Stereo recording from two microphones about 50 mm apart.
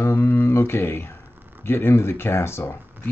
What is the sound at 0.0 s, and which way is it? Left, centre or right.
Speech, left.